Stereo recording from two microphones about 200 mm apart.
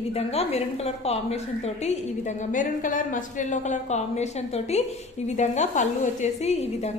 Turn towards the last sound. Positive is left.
turn(degrees=30)  # may be behind; listen again after turning